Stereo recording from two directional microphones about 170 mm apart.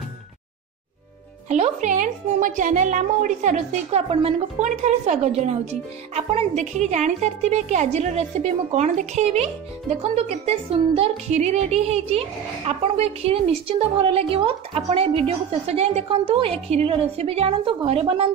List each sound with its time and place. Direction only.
1.5 s a woman's voice: 45° right (ahead or behind)